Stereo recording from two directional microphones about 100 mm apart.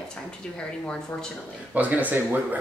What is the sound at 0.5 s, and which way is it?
Speech, 10° left (ahead or behind).